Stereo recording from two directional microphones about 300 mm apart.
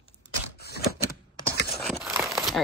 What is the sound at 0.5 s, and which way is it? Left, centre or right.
Typewriter, left.